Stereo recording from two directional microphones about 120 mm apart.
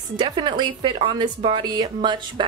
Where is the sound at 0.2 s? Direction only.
40° right (ahead or behind).